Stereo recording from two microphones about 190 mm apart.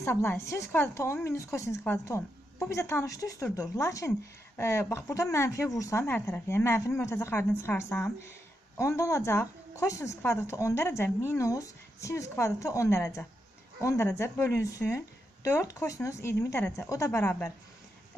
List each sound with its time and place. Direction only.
0.0 s speech: 10° left (ahead or behind)